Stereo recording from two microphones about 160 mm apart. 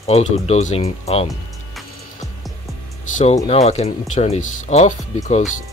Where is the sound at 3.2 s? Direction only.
45° left (ahead or behind).